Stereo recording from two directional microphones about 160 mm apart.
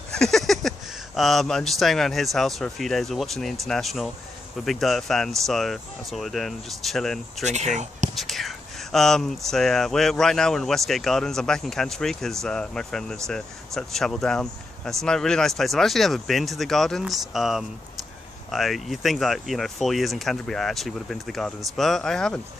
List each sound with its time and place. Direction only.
0.2 s speech: centre (ahead or behind)
7.4 s speech: 45° right (ahead or behind)
8.1 s speech: centre (ahead or behind)